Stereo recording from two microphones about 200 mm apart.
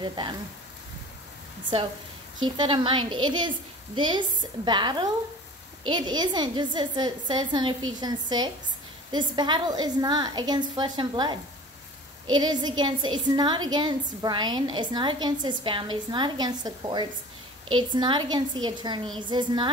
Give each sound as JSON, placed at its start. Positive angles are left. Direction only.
{"t": 0.0, "sound": "a woman's voice", "side_deg": -20}
{"t": 2.4, "sound": "a woman's voice", "side_deg": -25}
{"t": 12.4, "sound": "a woman's voice", "side_deg": -20}